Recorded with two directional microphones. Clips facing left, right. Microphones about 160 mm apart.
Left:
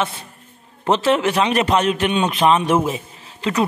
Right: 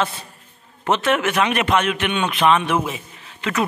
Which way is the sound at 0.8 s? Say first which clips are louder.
Left 2 dB; 30° left (ahead or behind).